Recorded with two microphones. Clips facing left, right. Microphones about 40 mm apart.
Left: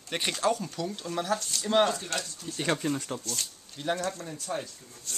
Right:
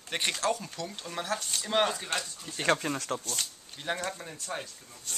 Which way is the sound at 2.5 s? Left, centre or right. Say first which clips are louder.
Right 2 dB; right.